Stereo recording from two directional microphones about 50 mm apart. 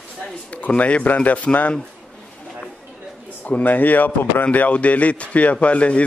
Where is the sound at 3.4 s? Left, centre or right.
Left.